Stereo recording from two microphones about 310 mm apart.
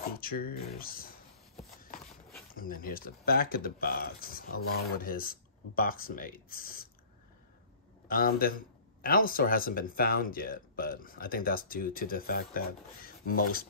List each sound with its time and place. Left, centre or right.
0.0 s speech: left
2.5 s speech: left
8.1 s speech: left